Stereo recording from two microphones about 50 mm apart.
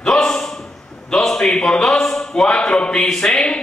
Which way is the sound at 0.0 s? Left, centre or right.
Centre.